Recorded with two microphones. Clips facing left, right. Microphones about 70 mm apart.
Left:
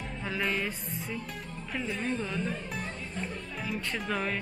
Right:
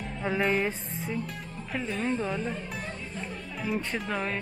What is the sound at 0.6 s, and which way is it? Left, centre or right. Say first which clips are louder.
Music: right 4 dB; right.